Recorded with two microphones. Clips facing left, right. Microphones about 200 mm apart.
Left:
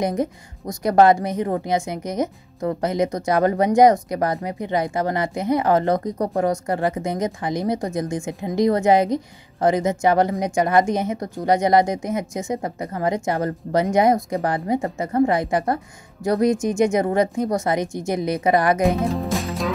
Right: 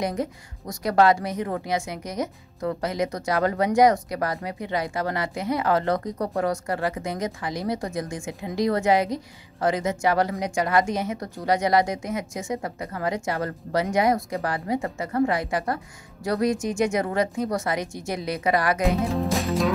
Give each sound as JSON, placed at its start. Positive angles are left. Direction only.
{"t": 0.0, "sound": "a woman's voice", "side_deg": 20}
{"t": 6.1, "sound": "speech", "side_deg": 35}
{"t": 6.4, "sound": "a woman's voice", "side_deg": 20}
{"t": 18.9, "sound": "music", "side_deg": 0}